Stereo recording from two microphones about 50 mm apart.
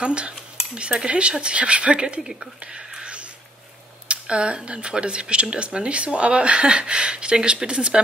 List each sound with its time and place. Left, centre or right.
0.0 s speech: right
2.6 s whispering: centre
4.1 s speech: right